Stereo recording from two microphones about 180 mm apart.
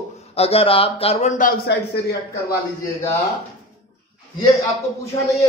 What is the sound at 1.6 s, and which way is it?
Speech, 65° left (ahead or behind).